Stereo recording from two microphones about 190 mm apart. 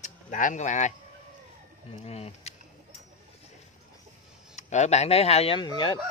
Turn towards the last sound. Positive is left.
turn(degrees=25)  # may be behind; listen again after turning